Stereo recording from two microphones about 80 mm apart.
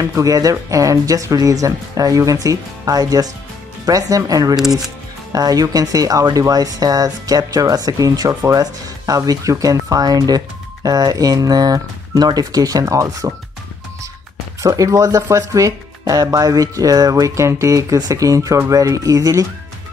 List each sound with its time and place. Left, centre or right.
0.0 s speech: right
4.6 s speech: centre
5.3 s speech: right
14.6 s speech: right